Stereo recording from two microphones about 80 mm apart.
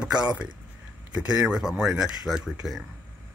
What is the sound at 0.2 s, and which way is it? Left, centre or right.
Speech, centre.